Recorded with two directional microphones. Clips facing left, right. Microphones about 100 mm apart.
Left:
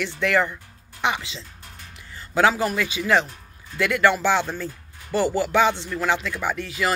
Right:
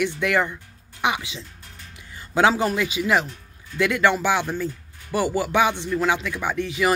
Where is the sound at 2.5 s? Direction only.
25° right (ahead or behind).